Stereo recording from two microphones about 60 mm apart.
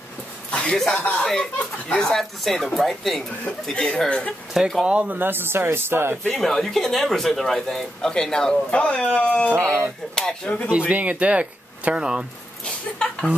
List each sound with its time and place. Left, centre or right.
0.5 s chuckle: centre
0.7 s speech: centre
4.6 s speech: centre
4.8 s speech: right
5.2 s speech: right
6.3 s speech: centre; by 9.5 s left
9.5 s speech: right
10.1 s speech: centre
10.9 s speech: right
12.6 s speech: centre